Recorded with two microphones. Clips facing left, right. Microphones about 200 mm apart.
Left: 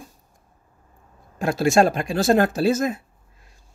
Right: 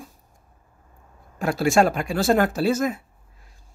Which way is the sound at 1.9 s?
30° left (ahead or behind).